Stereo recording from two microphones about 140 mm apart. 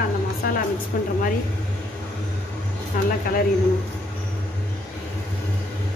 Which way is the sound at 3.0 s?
85° left.